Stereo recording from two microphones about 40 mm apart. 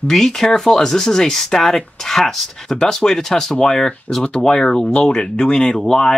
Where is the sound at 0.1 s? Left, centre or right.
Centre.